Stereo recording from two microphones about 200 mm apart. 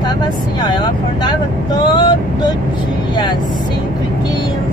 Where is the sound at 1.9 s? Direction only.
20° left (ahead or behind).